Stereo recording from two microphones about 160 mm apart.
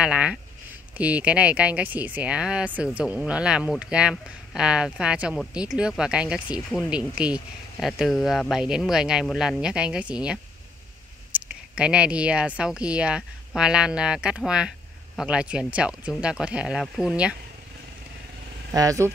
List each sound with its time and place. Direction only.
0.0 s speech: 5° right (ahead or behind)
18.7 s speech: 20° right (ahead or behind)